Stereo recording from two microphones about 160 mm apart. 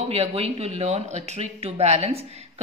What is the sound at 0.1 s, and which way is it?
Speech, 40° right (ahead or behind).